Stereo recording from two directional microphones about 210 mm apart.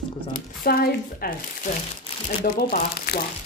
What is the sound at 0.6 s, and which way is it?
Speech, 45° left (ahead or behind).